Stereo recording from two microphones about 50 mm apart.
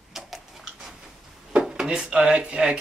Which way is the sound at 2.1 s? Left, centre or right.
Right.